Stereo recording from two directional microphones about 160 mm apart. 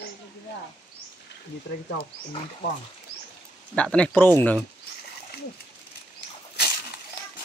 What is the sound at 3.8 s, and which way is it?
Speech, 5° left (ahead or behind).